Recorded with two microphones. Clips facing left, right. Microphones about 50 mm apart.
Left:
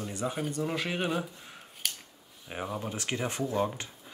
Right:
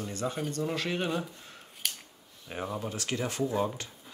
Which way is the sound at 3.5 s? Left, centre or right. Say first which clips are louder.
Even; centre.